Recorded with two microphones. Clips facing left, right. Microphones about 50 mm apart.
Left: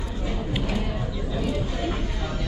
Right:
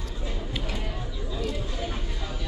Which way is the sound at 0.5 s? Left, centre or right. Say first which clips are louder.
Left 7 dB; centre.